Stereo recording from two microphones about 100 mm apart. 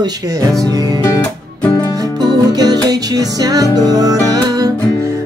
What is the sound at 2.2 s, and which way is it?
Music, 40° right (ahead or behind).